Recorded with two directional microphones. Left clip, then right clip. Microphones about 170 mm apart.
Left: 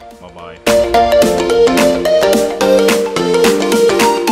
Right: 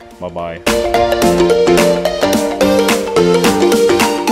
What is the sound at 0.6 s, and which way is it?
Music, centre (ahead or behind).